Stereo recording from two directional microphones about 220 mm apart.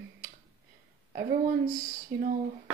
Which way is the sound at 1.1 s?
40° right (ahead or behind).